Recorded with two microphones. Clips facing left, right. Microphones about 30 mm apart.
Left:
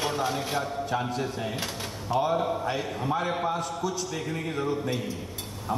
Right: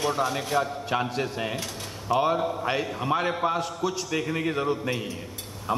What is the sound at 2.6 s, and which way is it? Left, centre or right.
A man's voice, right.